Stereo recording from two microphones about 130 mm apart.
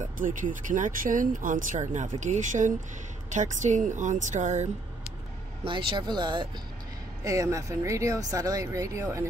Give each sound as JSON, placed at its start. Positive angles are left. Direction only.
{"t": 0.2, "sound": "a woman's voice", "side_deg": -90}
{"t": 5.7, "sound": "speech", "side_deg": -40}
{"t": 7.2, "sound": "speech", "side_deg": -25}